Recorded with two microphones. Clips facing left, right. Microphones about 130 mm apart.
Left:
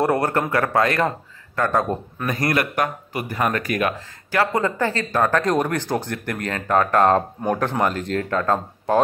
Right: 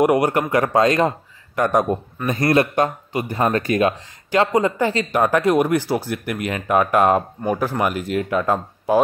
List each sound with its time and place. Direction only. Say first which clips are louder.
0.0 s speech: right 3 dB; 15° right (ahead or behind)